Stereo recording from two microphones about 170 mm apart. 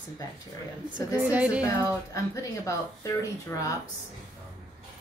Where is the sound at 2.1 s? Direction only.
20° left (ahead or behind).